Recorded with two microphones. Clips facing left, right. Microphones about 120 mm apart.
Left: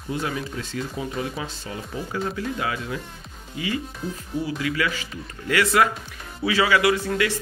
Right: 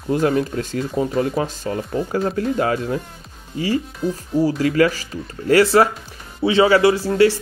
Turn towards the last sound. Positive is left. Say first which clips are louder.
# right 7 dB
turn(degrees=-30)  # may be behind; listen again after turning